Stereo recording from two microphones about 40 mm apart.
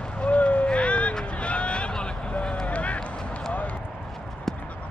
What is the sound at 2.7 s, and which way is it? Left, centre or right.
Run, left.